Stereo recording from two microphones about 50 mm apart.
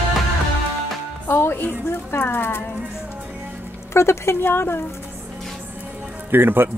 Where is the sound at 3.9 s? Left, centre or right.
Left.